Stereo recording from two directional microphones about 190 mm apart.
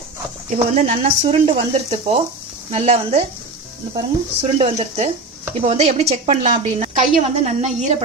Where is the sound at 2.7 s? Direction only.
35° right (ahead or behind).